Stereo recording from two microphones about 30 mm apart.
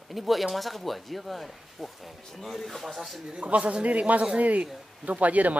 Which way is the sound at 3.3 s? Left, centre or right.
Right.